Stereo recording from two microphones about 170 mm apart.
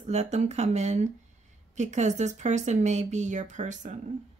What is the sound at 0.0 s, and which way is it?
Speech, 40° right (ahead or behind).